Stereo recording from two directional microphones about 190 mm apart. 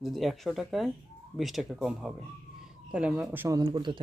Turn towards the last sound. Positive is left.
turn(degrees=-25)  # may be behind; listen again after turning